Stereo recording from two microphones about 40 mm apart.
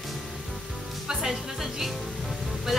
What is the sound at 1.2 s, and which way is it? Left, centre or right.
Speech, centre.